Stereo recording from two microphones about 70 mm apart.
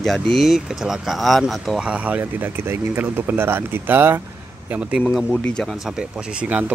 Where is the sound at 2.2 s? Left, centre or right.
Right.